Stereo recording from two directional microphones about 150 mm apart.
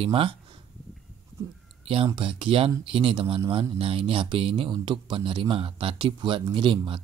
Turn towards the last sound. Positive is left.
turn(degrees=-35)  # may be behind; listen again after turning